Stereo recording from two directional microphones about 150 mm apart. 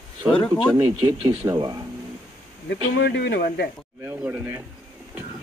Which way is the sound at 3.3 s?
90° left.